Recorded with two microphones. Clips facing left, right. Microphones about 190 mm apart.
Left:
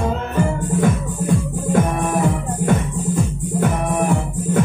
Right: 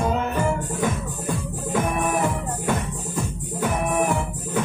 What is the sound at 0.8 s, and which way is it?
Music, 50° left (ahead or behind).